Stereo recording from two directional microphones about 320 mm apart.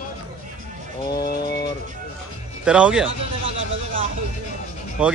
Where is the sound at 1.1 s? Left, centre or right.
Left.